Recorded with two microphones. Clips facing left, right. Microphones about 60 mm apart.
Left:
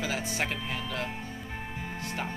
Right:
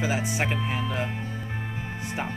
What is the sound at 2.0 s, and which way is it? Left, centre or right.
Music, centre.